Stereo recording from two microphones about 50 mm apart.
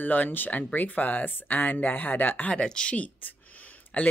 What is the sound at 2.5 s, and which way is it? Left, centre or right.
Speech, centre.